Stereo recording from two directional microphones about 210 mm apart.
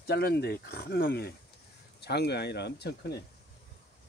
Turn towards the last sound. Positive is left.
turn(degrees=50)  # may be behind; listen again after turning